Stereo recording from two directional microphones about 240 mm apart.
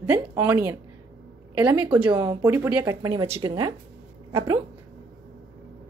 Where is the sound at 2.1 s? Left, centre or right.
Centre.